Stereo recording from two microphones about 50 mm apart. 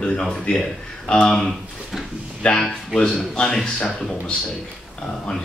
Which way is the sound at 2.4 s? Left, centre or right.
Left.